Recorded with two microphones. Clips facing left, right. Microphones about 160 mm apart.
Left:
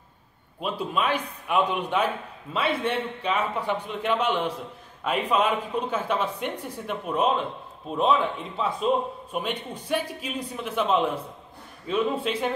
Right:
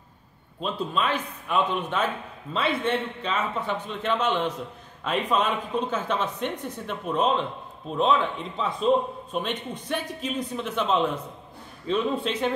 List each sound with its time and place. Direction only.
0.6 s a man's voice: 10° left (ahead or behind)